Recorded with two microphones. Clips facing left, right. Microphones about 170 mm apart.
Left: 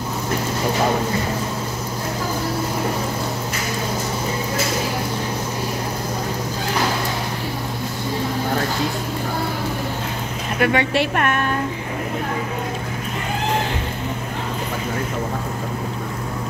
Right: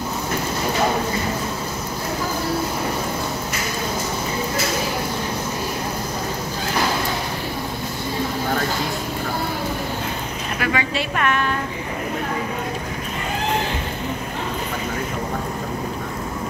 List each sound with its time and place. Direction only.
10.6 s speech: 60° left (ahead or behind)